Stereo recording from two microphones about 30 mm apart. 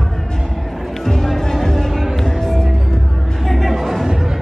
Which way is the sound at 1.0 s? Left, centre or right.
Centre.